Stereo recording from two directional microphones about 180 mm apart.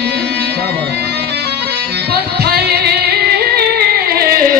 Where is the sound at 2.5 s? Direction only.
65° right (ahead or behind).